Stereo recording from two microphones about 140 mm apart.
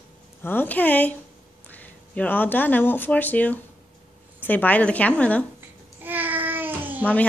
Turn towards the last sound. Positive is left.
turn(degrees=-15)  # may be behind; listen again after turning